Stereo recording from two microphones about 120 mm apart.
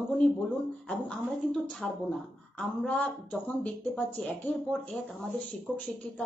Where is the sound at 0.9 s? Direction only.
5° left (ahead or behind).